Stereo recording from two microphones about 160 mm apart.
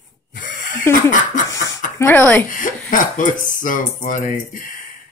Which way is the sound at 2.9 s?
55° left (ahead or behind).